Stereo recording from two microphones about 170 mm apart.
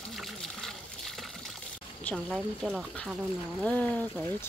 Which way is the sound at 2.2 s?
5° right (ahead or behind).